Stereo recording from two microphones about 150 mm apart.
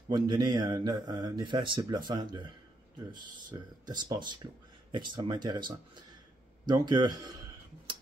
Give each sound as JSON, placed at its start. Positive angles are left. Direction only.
{"t": 0.1, "sound": "speech", "side_deg": -30}
{"t": 3.8, "sound": "speech", "side_deg": -30}